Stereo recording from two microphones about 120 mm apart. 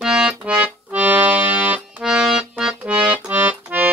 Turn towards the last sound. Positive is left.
turn(degrees=-15)  # may be behind; listen again after turning